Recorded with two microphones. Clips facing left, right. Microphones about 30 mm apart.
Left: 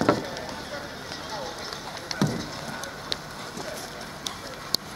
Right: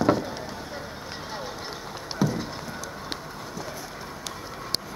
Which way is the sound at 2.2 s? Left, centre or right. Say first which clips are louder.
Right 1 dB; left.